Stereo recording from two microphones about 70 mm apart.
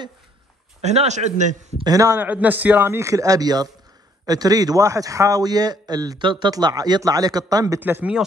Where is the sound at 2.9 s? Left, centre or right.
Right.